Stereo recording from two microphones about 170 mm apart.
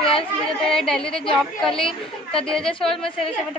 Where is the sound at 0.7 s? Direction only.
5° left (ahead or behind).